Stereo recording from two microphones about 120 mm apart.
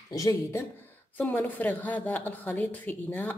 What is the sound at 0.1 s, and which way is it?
Speech, 30° left (ahead or behind).